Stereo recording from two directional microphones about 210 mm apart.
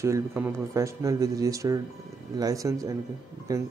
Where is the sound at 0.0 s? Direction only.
15° right (ahead or behind).